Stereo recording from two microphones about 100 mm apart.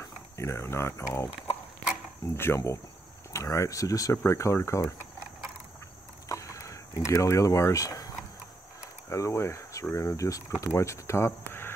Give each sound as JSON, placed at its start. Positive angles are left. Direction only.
{"t": 0.0, "sound": "speech", "side_deg": 30}
{"t": 2.3, "sound": "speech", "side_deg": 25}
{"t": 6.2, "sound": "a sound", "side_deg": 30}
{"t": 9.9, "sound": "speech", "side_deg": 30}